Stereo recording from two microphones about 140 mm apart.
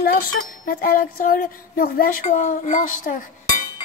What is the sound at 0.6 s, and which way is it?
Speech, 90° left.